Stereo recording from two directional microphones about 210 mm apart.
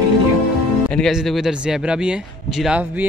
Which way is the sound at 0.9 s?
Centre (ahead or behind).